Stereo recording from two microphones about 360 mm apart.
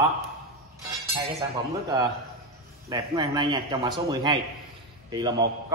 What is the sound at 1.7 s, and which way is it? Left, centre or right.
A man's voice, centre.